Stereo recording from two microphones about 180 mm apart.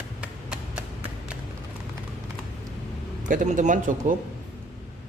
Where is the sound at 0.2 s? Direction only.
5° right (ahead or behind).